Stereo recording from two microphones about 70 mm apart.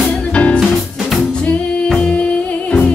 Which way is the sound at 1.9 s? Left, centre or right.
Centre.